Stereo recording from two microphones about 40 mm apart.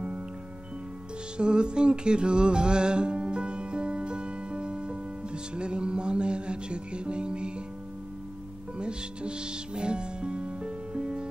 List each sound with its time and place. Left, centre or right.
1.4 s music: right
8.7 s music: right